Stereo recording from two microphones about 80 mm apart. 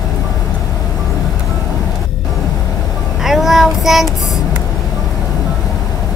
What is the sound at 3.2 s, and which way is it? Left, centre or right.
Child singing, centre.